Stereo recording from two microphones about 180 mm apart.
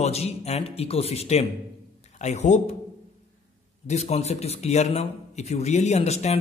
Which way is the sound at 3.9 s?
35° left (ahead or behind).